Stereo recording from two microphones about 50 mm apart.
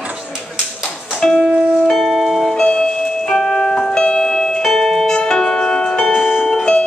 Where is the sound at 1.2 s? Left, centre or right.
Centre.